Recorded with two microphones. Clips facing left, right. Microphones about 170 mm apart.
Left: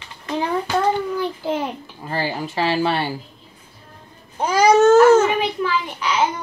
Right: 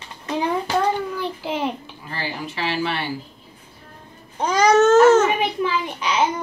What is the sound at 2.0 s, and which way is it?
Speech, 40° left (ahead or behind).